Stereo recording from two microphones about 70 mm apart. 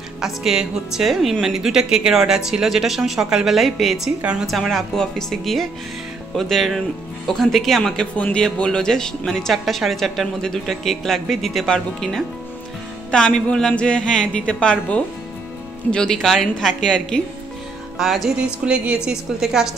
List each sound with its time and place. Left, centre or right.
0.2 s a woman's voice: centre
17.9 s a woman's voice: centre
18.4 s speech: centre
19.0 s speech: centre